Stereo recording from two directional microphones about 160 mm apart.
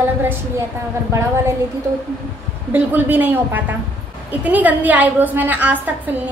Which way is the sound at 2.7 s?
10° right (ahead or behind).